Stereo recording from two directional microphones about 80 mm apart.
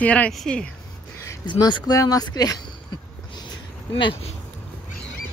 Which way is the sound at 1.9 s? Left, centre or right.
Left.